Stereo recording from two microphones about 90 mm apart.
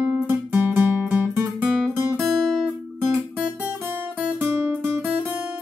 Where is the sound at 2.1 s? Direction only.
Centre (ahead or behind).